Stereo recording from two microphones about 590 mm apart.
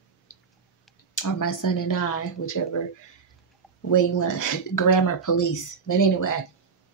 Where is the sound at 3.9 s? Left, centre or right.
Left.